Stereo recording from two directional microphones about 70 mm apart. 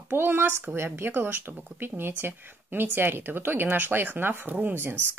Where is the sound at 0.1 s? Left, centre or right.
Right.